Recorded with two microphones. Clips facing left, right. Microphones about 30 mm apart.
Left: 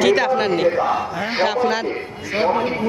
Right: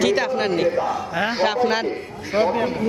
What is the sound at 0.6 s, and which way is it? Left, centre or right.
Speech, left.